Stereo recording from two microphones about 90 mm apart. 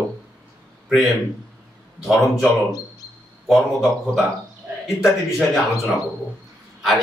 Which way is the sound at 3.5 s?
Centre (ahead or behind).